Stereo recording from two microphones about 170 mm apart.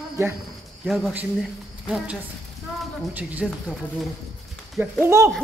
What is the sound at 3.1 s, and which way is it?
Speech, 10° right (ahead or behind).